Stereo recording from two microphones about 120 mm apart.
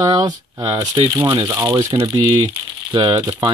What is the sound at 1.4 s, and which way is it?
Speech, 25° right (ahead or behind).